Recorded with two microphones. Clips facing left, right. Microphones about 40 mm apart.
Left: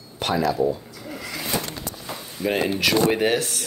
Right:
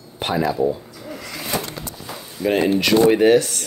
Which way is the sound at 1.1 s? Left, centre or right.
Centre.